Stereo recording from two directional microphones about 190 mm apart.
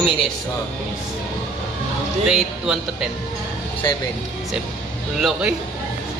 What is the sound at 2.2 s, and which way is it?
Speech, 5° right (ahead or behind).